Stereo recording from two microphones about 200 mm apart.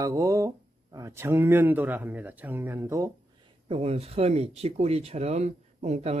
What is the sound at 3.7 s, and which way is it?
Speech, 30° right (ahead or behind).